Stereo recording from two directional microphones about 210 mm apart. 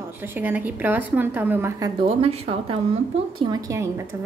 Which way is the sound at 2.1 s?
30° right (ahead or behind).